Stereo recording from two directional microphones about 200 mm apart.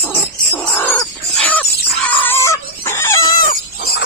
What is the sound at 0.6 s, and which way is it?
Chicken, 10° left (ahead or behind).